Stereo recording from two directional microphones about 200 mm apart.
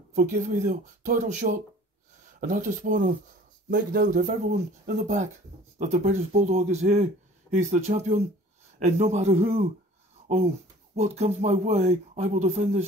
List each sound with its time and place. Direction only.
0.1 s speech: 40° right (ahead or behind)
11.0 s speech: 35° right (ahead or behind)